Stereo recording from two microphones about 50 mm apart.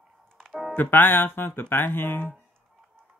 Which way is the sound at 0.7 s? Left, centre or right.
Left.